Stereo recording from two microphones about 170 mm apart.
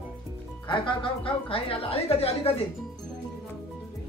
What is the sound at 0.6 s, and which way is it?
A woman's voice, 30° left (ahead or behind).